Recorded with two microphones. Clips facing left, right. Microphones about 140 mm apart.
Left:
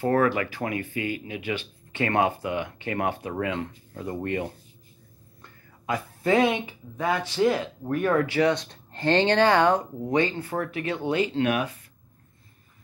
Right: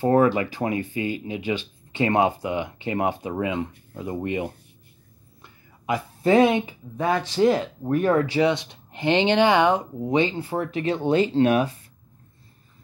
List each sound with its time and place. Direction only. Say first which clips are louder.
0.0 s speech: right 4 dB; 25° right (ahead or behind)